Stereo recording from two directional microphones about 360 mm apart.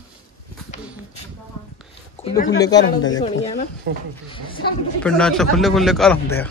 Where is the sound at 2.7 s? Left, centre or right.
Left.